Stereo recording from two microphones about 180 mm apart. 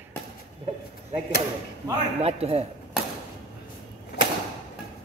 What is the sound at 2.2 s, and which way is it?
Speech, 35° right (ahead or behind).